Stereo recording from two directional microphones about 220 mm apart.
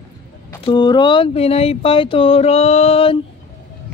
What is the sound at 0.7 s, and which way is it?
Speech, 20° left (ahead or behind).